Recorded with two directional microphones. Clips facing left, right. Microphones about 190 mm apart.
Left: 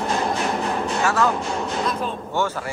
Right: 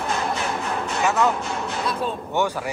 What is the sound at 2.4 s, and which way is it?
Speech, 15° right (ahead or behind).